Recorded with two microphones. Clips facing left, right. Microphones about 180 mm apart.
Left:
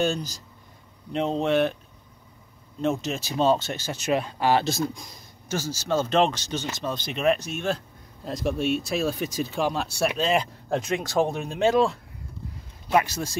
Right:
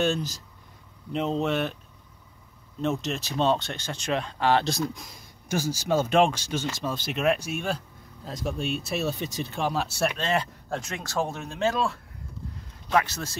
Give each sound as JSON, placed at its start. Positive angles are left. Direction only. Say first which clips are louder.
{"t": 0.0, "sound": "speech", "louder": "even", "side_deg": 0}
{"t": 2.8, "sound": "speech", "louder": "left 2 dB", "side_deg": 0}
{"t": 5.5, "sound": "speech", "louder": "right 1 dB", "side_deg": -15}
{"t": 10.7, "sound": "speech", "louder": "left 7 dB", "side_deg": 20}